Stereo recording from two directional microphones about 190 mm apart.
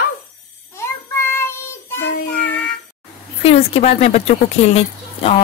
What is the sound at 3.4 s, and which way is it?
Speech, 35° left (ahead or behind).